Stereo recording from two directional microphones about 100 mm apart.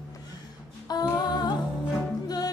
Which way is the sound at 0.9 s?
45° left (ahead or behind).